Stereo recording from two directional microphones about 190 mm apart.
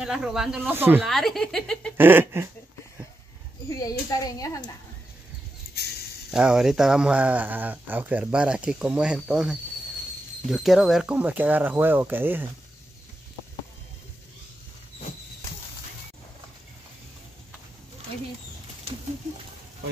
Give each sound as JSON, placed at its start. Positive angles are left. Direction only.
{"t": 0.0, "sound": "speech", "side_deg": -5}
{"t": 1.0, "sound": "speech", "side_deg": 0}
{"t": 2.0, "sound": "speech", "side_deg": -10}
{"t": 3.6, "sound": "a child's voice", "side_deg": 20}
{"t": 5.8, "sound": "a sound", "side_deg": 60}
{"t": 6.3, "sound": "speech", "side_deg": -5}